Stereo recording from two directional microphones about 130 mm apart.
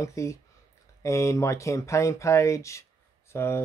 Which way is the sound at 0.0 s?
25° left (ahead or behind).